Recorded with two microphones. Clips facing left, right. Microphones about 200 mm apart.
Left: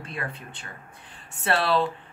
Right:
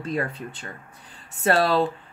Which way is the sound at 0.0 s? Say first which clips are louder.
Right 8 dB; 35° right (ahead or behind).